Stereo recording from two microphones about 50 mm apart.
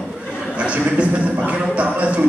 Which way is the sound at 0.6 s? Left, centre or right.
Right.